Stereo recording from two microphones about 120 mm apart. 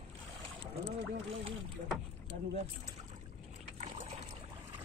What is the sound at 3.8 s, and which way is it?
Boat, 70° right (ahead or behind).